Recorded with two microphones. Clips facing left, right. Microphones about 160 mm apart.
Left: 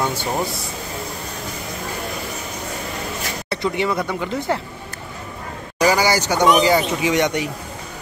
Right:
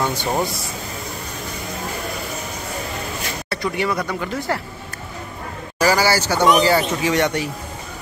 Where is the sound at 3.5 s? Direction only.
20° left (ahead or behind).